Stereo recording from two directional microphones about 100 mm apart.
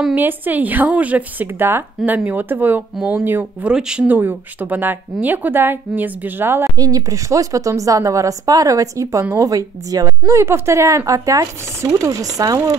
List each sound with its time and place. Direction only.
0.1 s a woman's voice: 20° right (ahead or behind)
3.0 s a woman's voice: 10° right (ahead or behind)
4.2 s a woman's voice: 20° right (ahead or behind)
6.8 s a woman's voice: 35° right (ahead or behind)